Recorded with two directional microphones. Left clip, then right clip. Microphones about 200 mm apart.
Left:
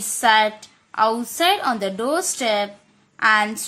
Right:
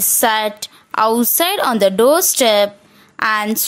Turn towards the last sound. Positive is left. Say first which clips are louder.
# even
turn(degrees=-45)  # may be behind; listen again after turning